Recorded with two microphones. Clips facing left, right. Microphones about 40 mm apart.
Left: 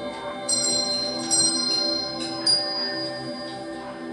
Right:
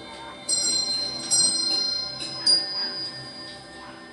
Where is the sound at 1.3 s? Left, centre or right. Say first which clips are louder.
Right 1 dB; centre.